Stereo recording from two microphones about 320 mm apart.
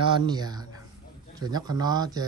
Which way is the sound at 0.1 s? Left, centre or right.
Centre.